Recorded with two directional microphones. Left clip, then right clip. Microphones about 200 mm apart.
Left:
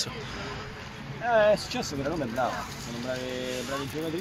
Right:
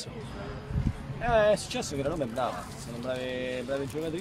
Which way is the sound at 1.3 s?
15° right (ahead or behind).